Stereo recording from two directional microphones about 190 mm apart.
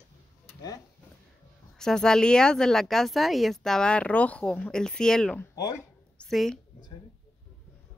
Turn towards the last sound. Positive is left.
turn(degrees=0)  # may be behind; listen again after turning